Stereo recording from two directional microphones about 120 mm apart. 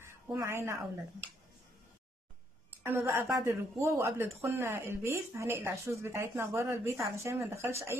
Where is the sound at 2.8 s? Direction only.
20° right (ahead or behind).